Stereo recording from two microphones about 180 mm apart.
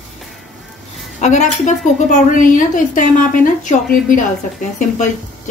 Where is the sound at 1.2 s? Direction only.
40° left (ahead or behind).